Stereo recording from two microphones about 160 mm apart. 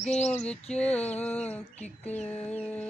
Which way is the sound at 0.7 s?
10° left (ahead or behind).